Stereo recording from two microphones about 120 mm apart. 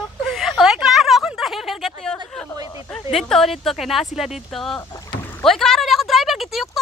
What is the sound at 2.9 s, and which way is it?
Speech, 5° left (ahead or behind).